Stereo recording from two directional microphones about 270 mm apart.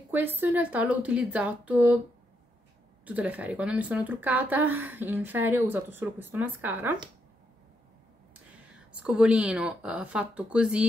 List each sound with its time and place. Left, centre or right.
0.1 s speech: centre
3.1 s speech: centre
9.0 s speech: centre